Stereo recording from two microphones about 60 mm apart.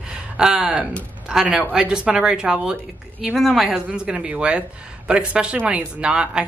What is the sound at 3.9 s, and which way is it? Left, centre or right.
A woman's voice, centre.